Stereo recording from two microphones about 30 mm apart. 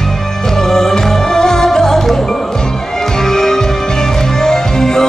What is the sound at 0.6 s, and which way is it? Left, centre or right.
Music, centre.